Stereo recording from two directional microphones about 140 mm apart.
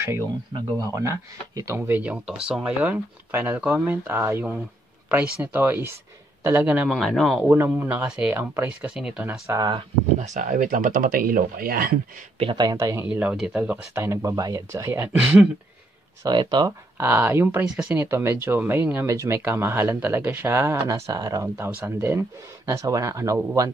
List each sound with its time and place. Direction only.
0.7 s a man's voice: 20° right (ahead or behind); by 7.4 s centre (ahead or behind)
7.4 s speech: 15° right (ahead or behind)
9.5 s speech: 25° right (ahead or behind)
10.2 s speech: 60° right (ahead or behind); by 12.0 s 90° right
12.4 s speech: 35° right (ahead or behind)
13.0 s speech: 10° right (ahead or behind)
16.2 s speech: 30° right (ahead or behind)
17.0 s speech: 15° right (ahead or behind)